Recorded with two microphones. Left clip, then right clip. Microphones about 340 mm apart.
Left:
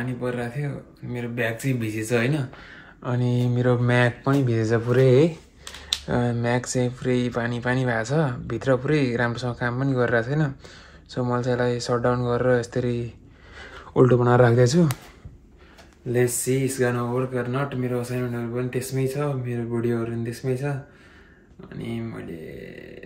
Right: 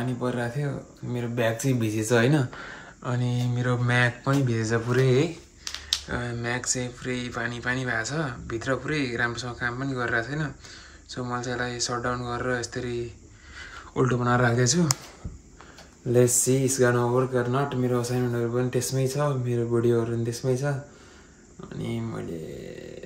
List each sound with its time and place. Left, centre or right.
0.2 s speech: centre
3.0 s speech: centre
16.1 s speech: centre